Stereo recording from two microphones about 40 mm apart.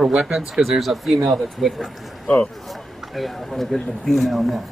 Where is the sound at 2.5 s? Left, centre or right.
Centre.